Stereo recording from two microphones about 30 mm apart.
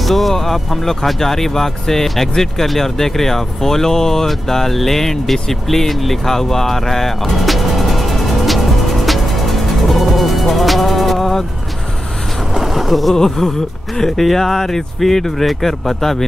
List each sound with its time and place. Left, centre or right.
0.0 s speech: centre
6.2 s music: centre
12.5 s a sound: centre
13.1 s speech: centre